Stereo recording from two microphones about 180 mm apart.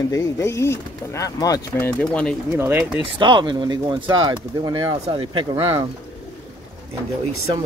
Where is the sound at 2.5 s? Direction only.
15° right (ahead or behind).